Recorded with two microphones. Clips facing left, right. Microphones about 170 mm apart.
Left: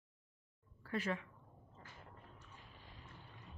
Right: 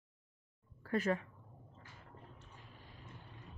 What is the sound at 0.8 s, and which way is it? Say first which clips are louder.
Speech: right 5 dB; 45° right (ahead or behind).